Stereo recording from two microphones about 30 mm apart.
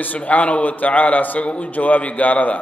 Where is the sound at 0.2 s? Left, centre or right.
Left.